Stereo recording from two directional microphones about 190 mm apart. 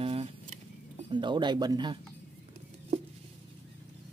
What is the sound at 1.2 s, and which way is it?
Speech, 25° right (ahead or behind).